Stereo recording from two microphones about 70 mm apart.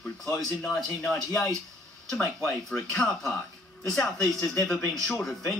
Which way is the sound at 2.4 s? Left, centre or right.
Centre.